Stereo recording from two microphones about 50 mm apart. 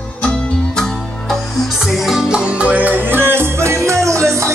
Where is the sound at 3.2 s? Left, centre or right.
Right.